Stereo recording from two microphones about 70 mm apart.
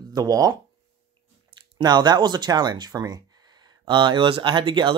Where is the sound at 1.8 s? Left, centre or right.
Right.